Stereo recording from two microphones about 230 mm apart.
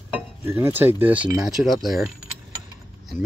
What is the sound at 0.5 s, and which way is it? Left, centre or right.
Speech, centre.